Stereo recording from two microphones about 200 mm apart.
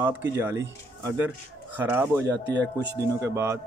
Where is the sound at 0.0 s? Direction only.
10° right (ahead or behind).